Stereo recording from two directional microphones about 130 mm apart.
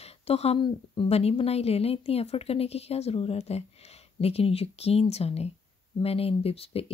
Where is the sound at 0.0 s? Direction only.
50° left (ahead or behind).